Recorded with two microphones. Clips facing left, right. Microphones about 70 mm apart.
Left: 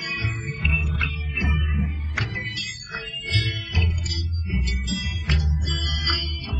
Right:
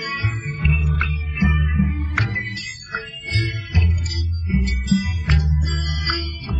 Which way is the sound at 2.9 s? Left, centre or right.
Right.